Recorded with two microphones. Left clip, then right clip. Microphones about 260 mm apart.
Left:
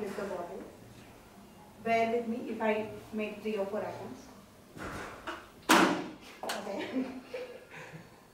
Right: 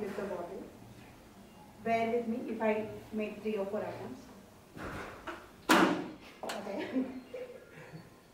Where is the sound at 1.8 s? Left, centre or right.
Centre.